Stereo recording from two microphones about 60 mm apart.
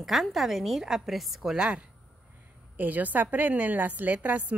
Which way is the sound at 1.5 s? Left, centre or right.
Centre.